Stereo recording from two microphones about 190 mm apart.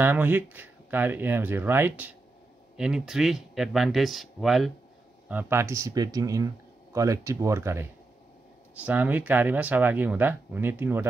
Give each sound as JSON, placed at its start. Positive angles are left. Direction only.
{"t": 0.0, "sound": "speech", "side_deg": -10}
{"t": 5.3, "sound": "speech", "side_deg": -10}